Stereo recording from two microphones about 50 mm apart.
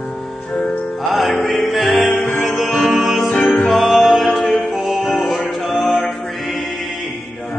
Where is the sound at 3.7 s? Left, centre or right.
Centre.